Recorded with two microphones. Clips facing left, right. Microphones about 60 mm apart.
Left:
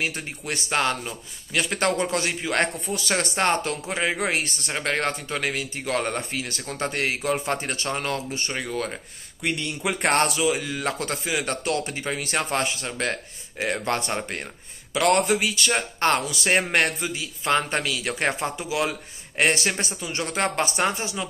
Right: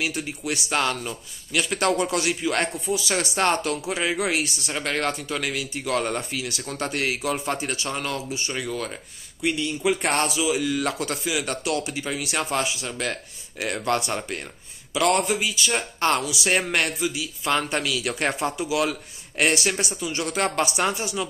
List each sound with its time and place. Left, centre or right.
0.0 s speech: left
3.4 s speech: left
9.4 s speech: left
10.6 s speech: left
13.6 s speech: left
15.0 s speech: left
16.0 s speech: left